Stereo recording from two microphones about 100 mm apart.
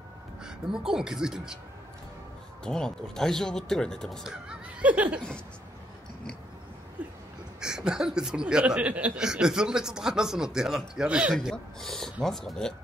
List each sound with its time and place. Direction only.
0.4 s speech: 5° right (ahead or behind)
2.6 s speech: 5° left (ahead or behind)
4.2 s speech: 10° right (ahead or behind)
7.0 s a sound: 15° right (ahead or behind)
7.6 s speech: 5° right (ahead or behind)
11.5 s speech: 5° left (ahead or behind)